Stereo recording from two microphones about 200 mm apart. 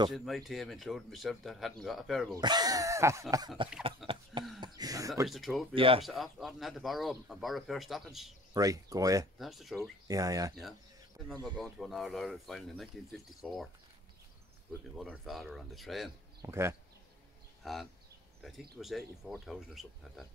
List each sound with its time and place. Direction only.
0.1 s speech: centre (ahead or behind)
2.3 s speech: 20° right (ahead or behind)
4.1 s cough: 25° right (ahead or behind)
4.6 s speech: 20° right (ahead or behind)
5.3 s speech: centre (ahead or behind)
5.8 s speech: 25° right (ahead or behind)
6.0 s speech: centre (ahead or behind)
8.5 s speech: 15° right (ahead or behind)
9.4 s speech: centre (ahead or behind)
10.0 s speech: 15° right (ahead or behind)
11.4 s speech: centre (ahead or behind)
15.0 s speech: centre (ahead or behind)
16.3 s speech: 15° right (ahead or behind)
17.6 s speech: centre (ahead or behind)